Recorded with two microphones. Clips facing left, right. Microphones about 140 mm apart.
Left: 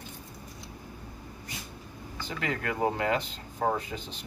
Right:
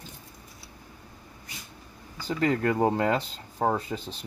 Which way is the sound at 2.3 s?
35° right (ahead or behind).